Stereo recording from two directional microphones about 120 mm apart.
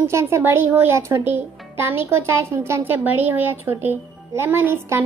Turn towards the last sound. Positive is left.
turn(degrees=-20)  # may be behind; listen again after turning